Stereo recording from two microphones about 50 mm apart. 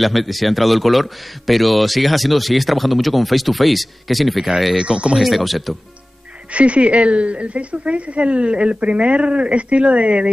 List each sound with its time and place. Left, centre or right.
0.0 s a man's voice: centre
4.7 s speech: right
5.2 s a man's voice: centre
6.5 s speech: right